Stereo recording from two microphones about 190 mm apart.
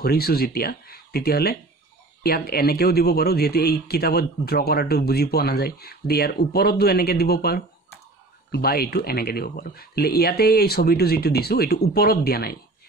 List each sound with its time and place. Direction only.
0.0 s speech: 55° left (ahead or behind)